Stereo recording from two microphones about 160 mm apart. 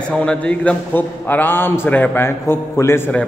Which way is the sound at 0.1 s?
5° left (ahead or behind).